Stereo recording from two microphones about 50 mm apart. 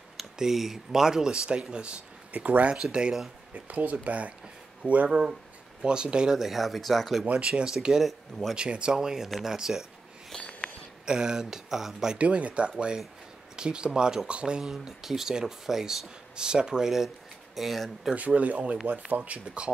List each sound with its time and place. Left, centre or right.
0.2 s speech: centre; by 2.7 s right
2.7 s speech: centre
3.5 s speech: right
5.8 s speech: centre
6.3 s speech: centre
7.4 s speech: centre
8.5 s speech: right
10.3 s writing: centre
11.1 s speech: centre
12.2 s speech: right; by 17.9 s centre
18.1 s speech: right